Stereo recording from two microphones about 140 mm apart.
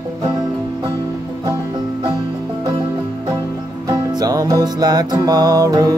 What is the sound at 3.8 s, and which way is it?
Music, 25° right (ahead or behind).